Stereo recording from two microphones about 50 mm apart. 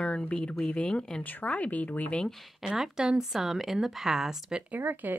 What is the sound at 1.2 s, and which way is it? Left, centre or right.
Speech, left.